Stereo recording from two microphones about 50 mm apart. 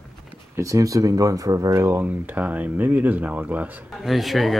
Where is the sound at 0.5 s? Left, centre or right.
Right.